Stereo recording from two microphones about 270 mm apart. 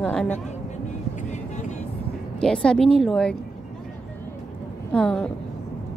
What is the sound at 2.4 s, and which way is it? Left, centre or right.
Speech, centre.